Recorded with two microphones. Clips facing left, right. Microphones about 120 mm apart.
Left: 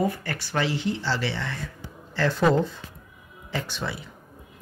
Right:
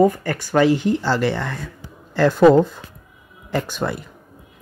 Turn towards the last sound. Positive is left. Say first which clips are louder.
# right 8 dB
turn(degrees=-50)  # may be behind; listen again after turning